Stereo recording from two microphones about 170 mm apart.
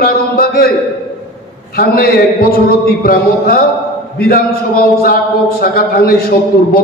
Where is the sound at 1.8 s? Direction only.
60° left (ahead or behind).